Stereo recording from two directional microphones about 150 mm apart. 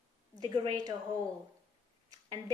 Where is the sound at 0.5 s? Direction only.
25° right (ahead or behind).